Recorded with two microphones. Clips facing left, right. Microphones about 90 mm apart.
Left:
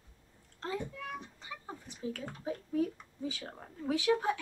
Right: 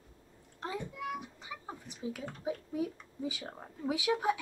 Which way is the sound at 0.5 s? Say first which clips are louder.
Left 1 dB; 15° right (ahead or behind).